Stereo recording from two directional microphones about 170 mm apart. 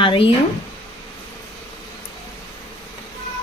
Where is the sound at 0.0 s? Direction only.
30° left (ahead or behind).